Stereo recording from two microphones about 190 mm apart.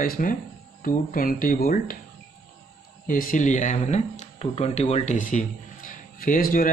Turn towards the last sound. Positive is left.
turn(degrees=45)  # may be behind; listen again after turning